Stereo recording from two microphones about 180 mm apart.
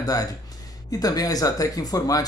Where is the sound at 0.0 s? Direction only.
20° left (ahead or behind).